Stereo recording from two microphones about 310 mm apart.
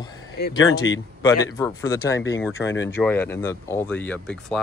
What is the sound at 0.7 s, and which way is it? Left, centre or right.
Speech, left.